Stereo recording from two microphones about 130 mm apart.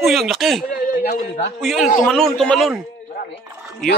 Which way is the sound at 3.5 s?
15° right (ahead or behind).